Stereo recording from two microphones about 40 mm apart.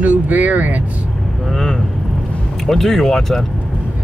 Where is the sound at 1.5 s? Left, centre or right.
Centre.